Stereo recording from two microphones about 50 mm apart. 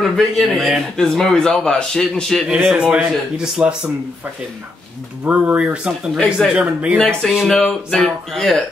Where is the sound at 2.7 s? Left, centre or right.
Right.